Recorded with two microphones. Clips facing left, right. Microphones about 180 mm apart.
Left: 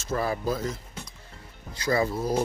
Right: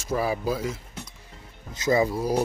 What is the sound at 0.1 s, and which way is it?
Speech, 10° right (ahead or behind).